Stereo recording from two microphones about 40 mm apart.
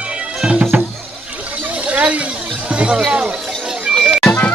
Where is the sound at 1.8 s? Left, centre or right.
Right.